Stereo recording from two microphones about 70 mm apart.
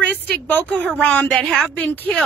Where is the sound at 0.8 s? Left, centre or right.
Centre.